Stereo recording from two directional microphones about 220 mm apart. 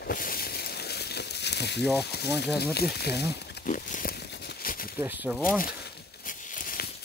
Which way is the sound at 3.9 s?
40° left (ahead or behind).